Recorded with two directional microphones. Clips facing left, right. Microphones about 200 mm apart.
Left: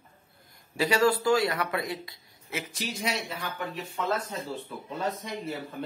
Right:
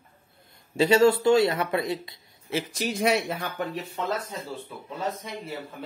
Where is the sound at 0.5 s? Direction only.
25° right (ahead or behind).